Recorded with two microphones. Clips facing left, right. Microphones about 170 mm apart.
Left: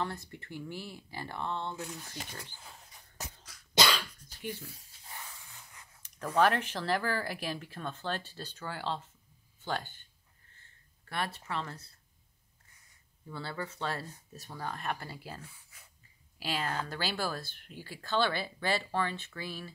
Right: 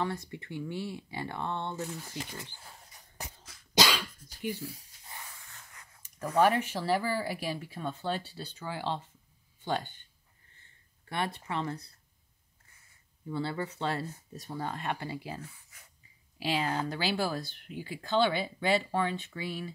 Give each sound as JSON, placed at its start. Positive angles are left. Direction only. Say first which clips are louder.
{"t": 0.0, "sound": "speech", "louder": "right 3 dB", "side_deg": -20}
{"t": 1.8, "sound": "speech", "louder": "right 4 dB", "side_deg": 0}
{"t": 3.8, "sound": "cough", "louder": "even", "side_deg": -10}
{"t": 5.4, "sound": "a sound", "louder": "right 1 dB", "side_deg": 10}
{"t": 6.0, "sound": "speech", "louder": "right 2 dB", "side_deg": -10}
{"t": 11.1, "sound": "speech", "louder": "right 3 dB", "side_deg": -20}
{"t": 13.3, "sound": "speech", "louder": "right 6 dB", "side_deg": -20}
{"t": 15.0, "sound": "speech", "louder": "right 6 dB", "side_deg": -10}